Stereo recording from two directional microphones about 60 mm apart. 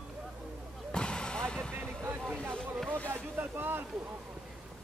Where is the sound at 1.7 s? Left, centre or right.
Right.